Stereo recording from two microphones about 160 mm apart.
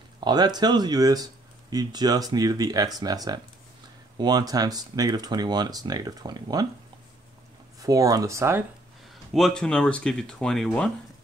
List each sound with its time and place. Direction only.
0.2 s speech: 25° right (ahead or behind)
7.8 s speech: 20° right (ahead or behind)
9.3 s speech: centre (ahead or behind)